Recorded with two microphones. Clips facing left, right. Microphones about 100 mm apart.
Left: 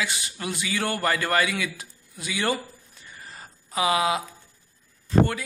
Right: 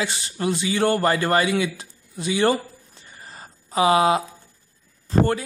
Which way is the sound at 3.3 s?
35° right (ahead or behind).